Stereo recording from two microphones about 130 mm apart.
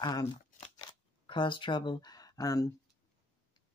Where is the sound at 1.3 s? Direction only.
40° left (ahead or behind).